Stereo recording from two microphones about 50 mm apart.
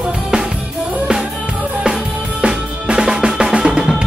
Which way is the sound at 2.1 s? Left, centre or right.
Right.